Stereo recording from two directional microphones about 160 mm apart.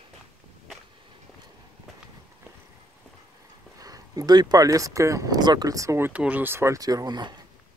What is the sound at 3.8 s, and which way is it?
Speech, 25° right (ahead or behind).